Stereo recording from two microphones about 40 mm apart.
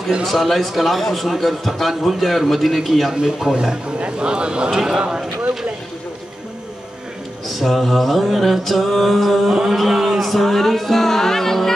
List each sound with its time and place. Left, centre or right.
0.2 s a man's voice: centre
4.0 s speech: right
7.4 s a man's voice: centre
9.8 s music: centre